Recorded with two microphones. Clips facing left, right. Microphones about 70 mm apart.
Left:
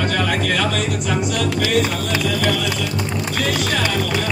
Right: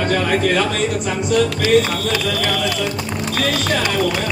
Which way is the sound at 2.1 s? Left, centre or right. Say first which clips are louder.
Left 2 dB; left.